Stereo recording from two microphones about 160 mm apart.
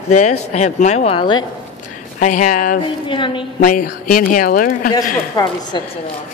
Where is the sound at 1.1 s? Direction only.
30° left (ahead or behind).